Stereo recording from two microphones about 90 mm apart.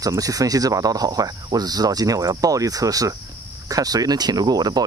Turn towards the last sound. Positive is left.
turn(degrees=-45)  # may be behind; listen again after turning